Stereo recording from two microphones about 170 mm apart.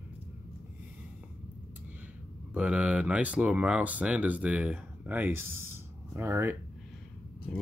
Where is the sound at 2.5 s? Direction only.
5° right (ahead or behind).